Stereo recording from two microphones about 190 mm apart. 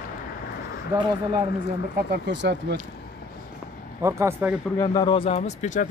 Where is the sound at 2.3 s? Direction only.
65° right (ahead or behind).